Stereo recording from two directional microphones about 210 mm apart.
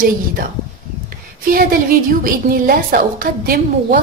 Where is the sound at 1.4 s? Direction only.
40° right (ahead or behind).